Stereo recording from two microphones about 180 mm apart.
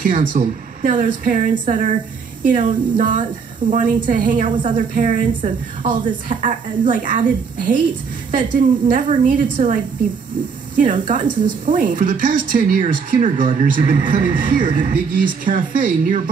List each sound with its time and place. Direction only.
0.0 s speech: 45° right (ahead or behind)
10.8 s speech: 45° right (ahead or behind)